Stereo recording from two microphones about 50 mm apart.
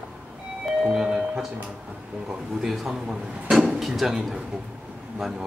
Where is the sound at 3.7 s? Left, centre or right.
Centre.